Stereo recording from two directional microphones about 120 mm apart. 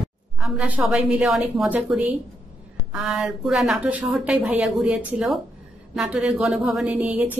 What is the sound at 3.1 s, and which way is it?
Speech, 5° right (ahead or behind).